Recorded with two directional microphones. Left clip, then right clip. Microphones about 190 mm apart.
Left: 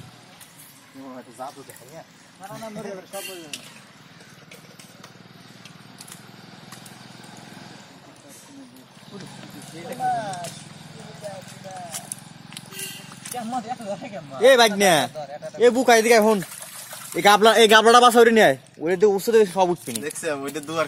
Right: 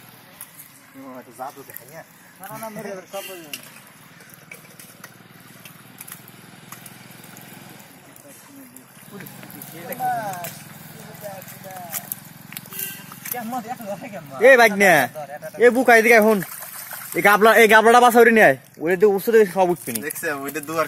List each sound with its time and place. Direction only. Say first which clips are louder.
2.9 s speech: right 2 dB; 20° right (ahead or behind)
10.0 s a sound: right 1 dB; centre (ahead or behind)
13.2 s speech: even; 15° right (ahead or behind)
14.0 s speech: even; 5° right (ahead or behind)
14.4 s a man's voice: right 3 dB; 25° right (ahead or behind)
20.0 s speech: right 1 dB; 10° left (ahead or behind)